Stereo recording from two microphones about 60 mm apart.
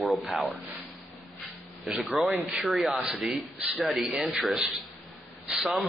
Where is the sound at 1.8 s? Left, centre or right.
Centre.